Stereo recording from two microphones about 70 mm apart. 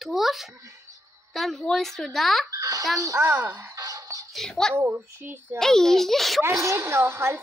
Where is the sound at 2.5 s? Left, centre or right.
Right.